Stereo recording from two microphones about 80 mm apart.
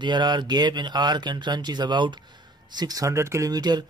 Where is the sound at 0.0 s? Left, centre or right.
Right.